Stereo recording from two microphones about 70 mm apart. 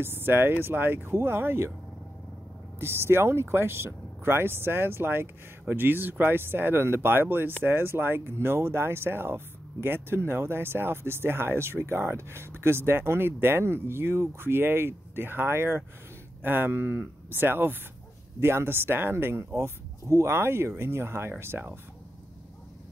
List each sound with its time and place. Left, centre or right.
0.0 s speech: right
2.8 s speech: right